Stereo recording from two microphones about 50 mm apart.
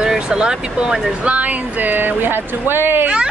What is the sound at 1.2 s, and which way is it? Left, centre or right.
Speech, right.